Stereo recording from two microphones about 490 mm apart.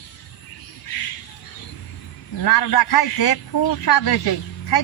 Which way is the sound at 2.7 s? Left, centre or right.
Left.